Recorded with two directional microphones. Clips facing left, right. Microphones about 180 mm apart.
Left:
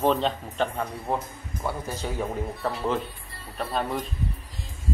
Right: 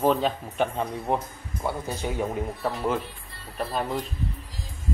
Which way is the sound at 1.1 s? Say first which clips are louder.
Right 2 dB; 20° right (ahead or behind).